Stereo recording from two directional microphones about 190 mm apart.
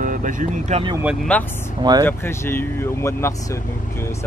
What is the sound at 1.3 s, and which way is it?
Speech, 5° left (ahead or behind).